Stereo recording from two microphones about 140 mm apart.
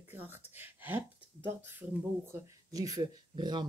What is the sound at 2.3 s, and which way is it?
Speech, 25° right (ahead or behind).